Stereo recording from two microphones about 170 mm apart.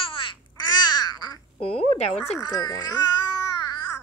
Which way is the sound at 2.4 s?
20° left (ahead or behind).